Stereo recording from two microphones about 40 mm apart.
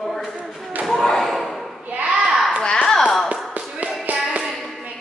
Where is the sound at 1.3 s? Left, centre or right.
Centre.